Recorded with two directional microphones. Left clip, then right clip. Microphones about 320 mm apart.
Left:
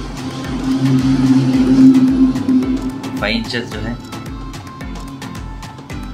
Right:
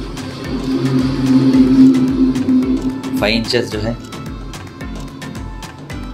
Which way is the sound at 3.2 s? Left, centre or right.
Centre.